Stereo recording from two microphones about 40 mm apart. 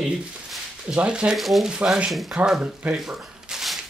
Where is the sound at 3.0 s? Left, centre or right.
Centre.